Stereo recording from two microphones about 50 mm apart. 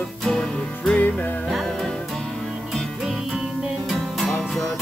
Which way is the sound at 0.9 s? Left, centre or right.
Left.